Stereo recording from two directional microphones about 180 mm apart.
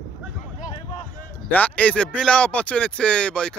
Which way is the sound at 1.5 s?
10° left (ahead or behind).